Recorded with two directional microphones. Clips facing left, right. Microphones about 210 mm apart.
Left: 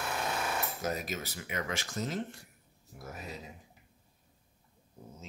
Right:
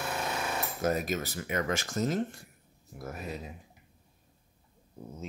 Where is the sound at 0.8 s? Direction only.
50° right (ahead or behind).